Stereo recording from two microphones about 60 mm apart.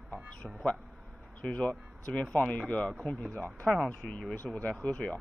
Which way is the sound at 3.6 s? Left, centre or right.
Centre.